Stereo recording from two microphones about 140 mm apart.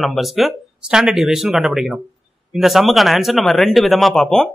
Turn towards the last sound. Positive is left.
turn(degrees=5)  # may be behind; listen again after turning